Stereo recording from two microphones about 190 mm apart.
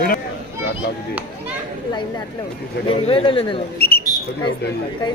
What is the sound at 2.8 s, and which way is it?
Speech, 30° left (ahead or behind).